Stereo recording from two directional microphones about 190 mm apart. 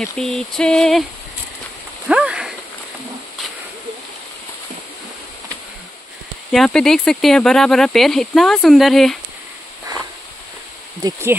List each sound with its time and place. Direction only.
0.0 s speech: centre (ahead or behind)
2.0 s a sound: 5° right (ahead or behind)
6.5 s speech: centre (ahead or behind)
11.0 s speech: 15° right (ahead or behind)